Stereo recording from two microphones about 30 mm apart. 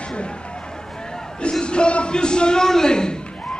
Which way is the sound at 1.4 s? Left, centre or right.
Left.